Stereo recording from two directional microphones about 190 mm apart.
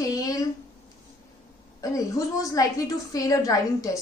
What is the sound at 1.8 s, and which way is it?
A woman's voice, 20° left (ahead or behind).